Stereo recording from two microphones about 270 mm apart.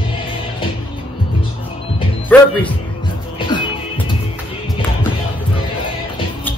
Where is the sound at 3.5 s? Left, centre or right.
Centre.